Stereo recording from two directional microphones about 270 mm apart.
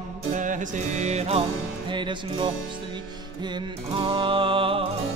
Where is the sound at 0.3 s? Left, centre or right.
Right.